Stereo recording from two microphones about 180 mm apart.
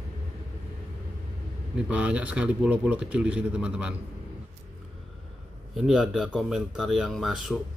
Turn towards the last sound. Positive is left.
turn(degrees=0)  # may be behind; listen again after turning